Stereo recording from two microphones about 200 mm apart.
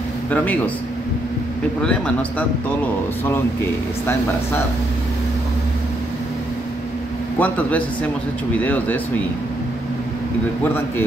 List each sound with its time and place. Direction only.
1.8 s a man's voice: 5° left (ahead or behind)
7.3 s speech: 5° left (ahead or behind)